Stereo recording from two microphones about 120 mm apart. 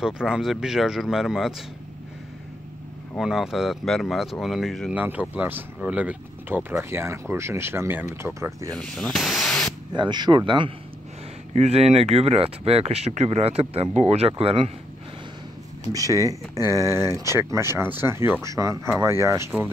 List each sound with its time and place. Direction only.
0.0 s speech: 5° right (ahead or behind)
3.2 s speech: 5° right (ahead or behind)
4.9 s speech: 15° right (ahead or behind)
6.7 s speech: 25° right (ahead or behind)
8.7 s speech: 5° left (ahead or behind)
9.9 s speech: 40° right (ahead or behind)
11.5 s speech: 60° right (ahead or behind)
15.9 s speech: 30° right (ahead or behind)